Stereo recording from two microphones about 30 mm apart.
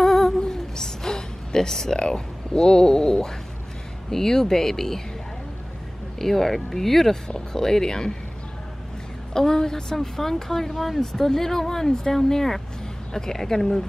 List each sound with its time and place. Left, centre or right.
0.0 s humming: centre
0.4 s a sound: centre
2.0 s speech: left; by 5.0 s centre
6.1 s speech: centre
9.3 s speech: left